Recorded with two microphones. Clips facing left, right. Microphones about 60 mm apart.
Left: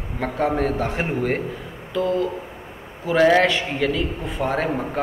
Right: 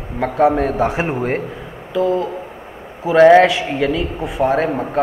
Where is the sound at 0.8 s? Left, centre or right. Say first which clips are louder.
Right 5 dB; centre.